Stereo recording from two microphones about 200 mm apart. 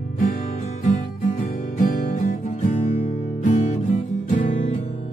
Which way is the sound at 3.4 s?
40° left (ahead or behind).